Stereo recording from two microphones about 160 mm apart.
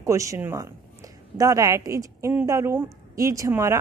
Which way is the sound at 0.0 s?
20° right (ahead or behind).